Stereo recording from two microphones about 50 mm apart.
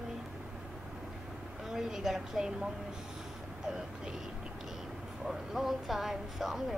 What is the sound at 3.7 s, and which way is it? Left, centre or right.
Speech, centre.